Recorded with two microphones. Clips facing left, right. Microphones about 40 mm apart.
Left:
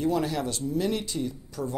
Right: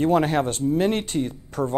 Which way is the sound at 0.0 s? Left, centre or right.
Right.